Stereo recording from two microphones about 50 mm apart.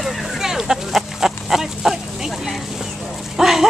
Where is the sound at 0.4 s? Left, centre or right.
Centre.